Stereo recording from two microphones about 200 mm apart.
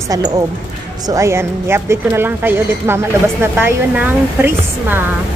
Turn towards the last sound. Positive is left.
turn(degrees=-10)  # may be behind; listen again after turning